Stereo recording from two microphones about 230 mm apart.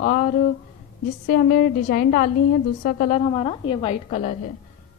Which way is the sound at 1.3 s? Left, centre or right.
Left.